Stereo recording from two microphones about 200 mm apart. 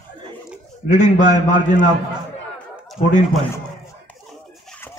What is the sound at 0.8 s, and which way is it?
A man's voice, 40° left (ahead or behind).